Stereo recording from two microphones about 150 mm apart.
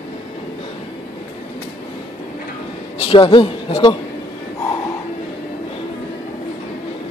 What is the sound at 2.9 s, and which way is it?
A man's voice, 35° left (ahead or behind).